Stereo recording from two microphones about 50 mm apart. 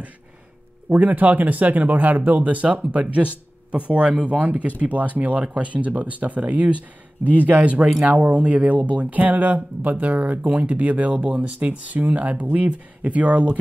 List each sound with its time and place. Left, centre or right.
0.8 s speech: right
7.2 s speech: right
7.6 s speech: right